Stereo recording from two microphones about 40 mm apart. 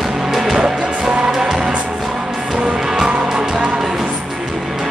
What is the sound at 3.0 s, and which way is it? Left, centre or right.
Music, right.